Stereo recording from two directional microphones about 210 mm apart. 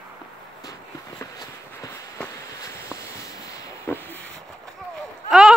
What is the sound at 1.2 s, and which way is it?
Walk, 15° left (ahead or behind).